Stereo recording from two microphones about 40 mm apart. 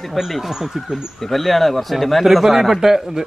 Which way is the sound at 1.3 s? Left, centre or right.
Centre.